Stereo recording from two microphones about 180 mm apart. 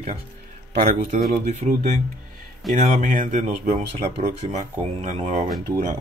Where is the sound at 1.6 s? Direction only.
40° right (ahead or behind).